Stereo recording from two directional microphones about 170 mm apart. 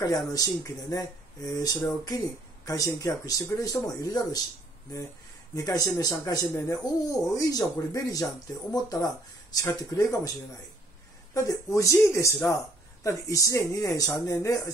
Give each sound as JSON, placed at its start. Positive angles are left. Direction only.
{"t": 0.0, "sound": "speech", "side_deg": 20}
{"t": 5.5, "sound": "speech", "side_deg": 20}
{"t": 11.3, "sound": "speech", "side_deg": 20}